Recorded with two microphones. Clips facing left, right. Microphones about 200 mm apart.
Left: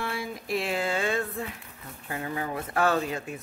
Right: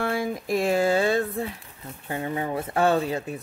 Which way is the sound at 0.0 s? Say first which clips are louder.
Right 7 dB; 50° right (ahead or behind).